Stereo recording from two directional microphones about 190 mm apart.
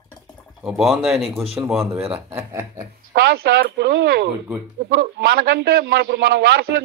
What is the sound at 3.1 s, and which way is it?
Speech, 60° right (ahead or behind).